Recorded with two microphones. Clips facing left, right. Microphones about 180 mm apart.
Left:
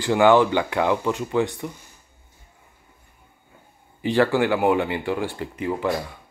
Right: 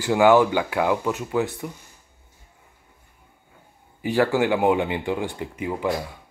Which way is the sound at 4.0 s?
10° right (ahead or behind).